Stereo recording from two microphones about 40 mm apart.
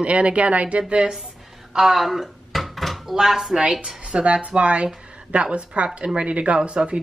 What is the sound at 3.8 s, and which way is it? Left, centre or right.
A woman's voice, right.